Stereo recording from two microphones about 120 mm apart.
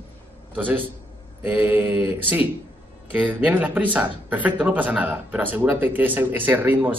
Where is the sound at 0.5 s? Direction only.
15° right (ahead or behind).